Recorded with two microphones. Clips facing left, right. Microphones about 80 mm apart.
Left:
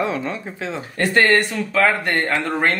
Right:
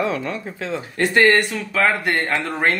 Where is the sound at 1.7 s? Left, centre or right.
Centre.